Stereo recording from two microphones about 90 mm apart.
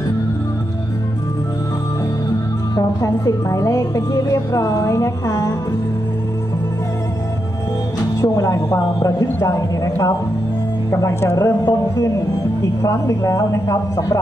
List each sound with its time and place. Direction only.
2.7 s a woman's voice: 45° left (ahead or behind)
8.2 s a woman's voice: 35° left (ahead or behind)